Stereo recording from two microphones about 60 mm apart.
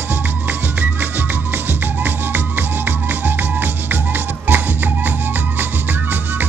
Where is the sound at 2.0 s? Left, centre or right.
Right.